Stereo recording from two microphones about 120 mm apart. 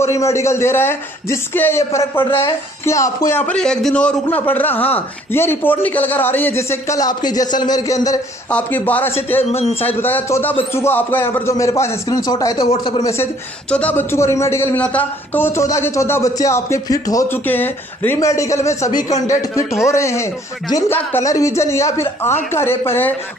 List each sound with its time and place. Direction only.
0.1 s speech: 25° left (ahead or behind)
3.4 s a man's voice: 5° left (ahead or behind); by 8.2 s 30° left (ahead or behind)
8.5 s a man's voice: 10° left (ahead or behind)
9.4 s a man's voice: 60° left (ahead or behind)
9.8 s speech: 15° left (ahead or behind); by 12.6 s 35° left (ahead or behind)
13.7 s a man's voice: 10° left (ahead or behind)
14.1 s speech: 25° left (ahead or behind)
14.8 s speech: 10° left (ahead or behind); by 17.3 s 30° left (ahead or behind)
17.3 s speech: 15° left (ahead or behind)